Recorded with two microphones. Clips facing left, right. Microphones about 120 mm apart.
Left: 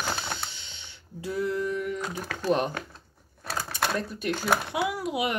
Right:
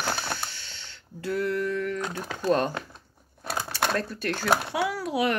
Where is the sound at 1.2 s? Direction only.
70° right (ahead or behind).